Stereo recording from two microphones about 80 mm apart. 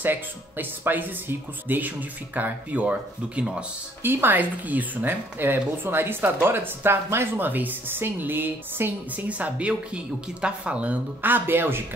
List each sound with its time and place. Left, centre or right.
0.0 s a woman's voice: right
4.0 s a woman's voice: right